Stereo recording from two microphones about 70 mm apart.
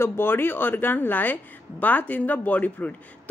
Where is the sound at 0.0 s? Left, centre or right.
Left.